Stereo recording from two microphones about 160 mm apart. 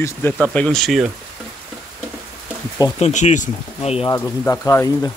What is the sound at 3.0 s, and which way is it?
Speech, 50° left (ahead or behind).